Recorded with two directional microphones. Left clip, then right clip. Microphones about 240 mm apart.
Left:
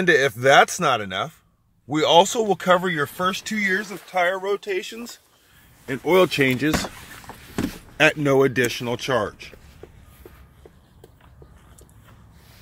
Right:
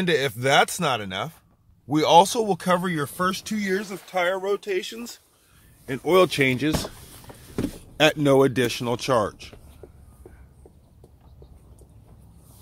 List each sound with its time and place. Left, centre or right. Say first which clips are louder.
0.5 s speech: left 4 dB; centre
8.0 s speech: left 1 dB; centre